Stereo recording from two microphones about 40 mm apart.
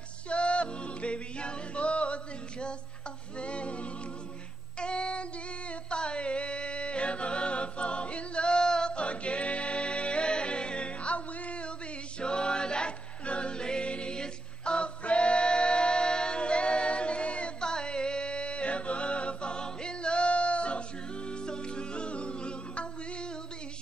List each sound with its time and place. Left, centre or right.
0.3 s music: left
3.3 s music: left
4.7 s child singing: left
5.7 s music: left
12.2 s music: left